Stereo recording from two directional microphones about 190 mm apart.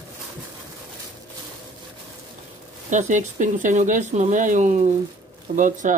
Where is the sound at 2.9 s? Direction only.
40° right (ahead or behind).